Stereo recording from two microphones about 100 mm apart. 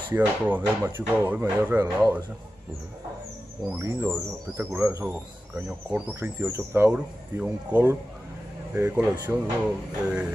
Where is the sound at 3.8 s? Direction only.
25° right (ahead or behind).